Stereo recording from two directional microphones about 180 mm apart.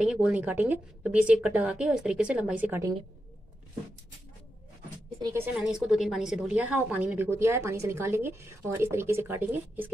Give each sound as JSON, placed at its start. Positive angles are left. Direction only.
{"t": 0.0, "sound": "a woman's voice", "side_deg": -5}
{"t": 5.2, "sound": "a woman's voice", "side_deg": -15}
{"t": 5.5, "sound": "a woman's voice", "side_deg": -5}